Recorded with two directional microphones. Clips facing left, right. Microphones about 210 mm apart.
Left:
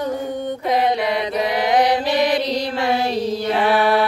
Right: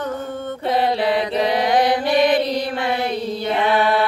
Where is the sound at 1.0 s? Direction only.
25° right (ahead or behind).